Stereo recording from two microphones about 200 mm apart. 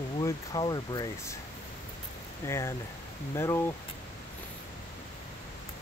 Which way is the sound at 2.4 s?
15° left (ahead or behind).